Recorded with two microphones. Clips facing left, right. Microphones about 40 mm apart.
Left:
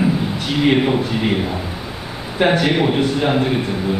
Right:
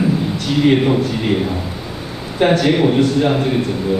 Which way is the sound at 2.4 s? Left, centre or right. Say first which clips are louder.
Right 2 dB; centre.